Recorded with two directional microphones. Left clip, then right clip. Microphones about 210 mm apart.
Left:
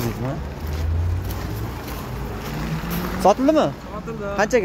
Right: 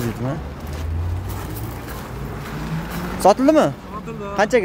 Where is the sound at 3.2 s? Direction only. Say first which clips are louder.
Right 3 dB; 20° right (ahead or behind).